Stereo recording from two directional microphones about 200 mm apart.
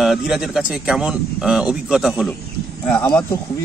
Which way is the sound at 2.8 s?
10° left (ahead or behind).